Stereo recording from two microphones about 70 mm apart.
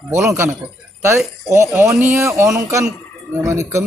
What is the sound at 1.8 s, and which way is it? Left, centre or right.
Speech, right.